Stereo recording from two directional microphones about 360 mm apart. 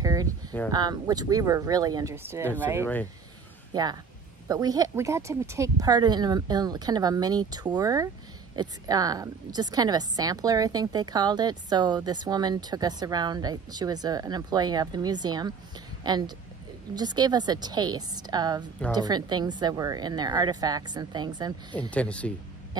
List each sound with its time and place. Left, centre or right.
0.0 s a sound: centre
0.7 s a woman's voice: centre
21.9 s speech: centre